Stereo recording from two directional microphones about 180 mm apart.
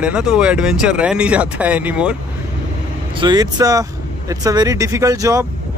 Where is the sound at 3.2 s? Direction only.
20° right (ahead or behind).